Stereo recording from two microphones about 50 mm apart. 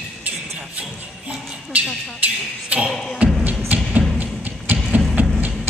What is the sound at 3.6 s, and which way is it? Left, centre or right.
Music, right.